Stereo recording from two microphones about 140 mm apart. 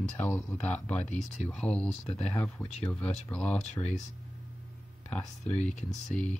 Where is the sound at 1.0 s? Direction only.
55° left (ahead or behind).